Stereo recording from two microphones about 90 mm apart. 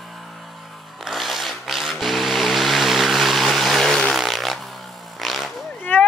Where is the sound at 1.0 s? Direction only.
Centre (ahead or behind).